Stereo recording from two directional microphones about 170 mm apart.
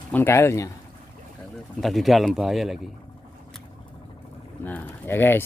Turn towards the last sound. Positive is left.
turn(degrees=15)  # may be behind; listen again after turning